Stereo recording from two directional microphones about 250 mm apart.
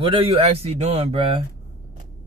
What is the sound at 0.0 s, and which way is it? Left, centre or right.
Speech, right.